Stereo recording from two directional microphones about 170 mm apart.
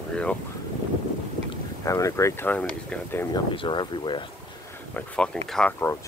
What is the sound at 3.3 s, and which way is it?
Speech, 30° left (ahead or behind).